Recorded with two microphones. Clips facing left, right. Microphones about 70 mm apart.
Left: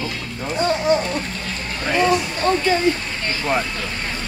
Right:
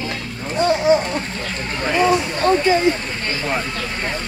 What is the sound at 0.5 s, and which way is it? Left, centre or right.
Speech, centre.